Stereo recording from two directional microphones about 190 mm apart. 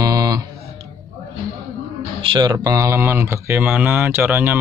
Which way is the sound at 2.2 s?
25° right (ahead or behind).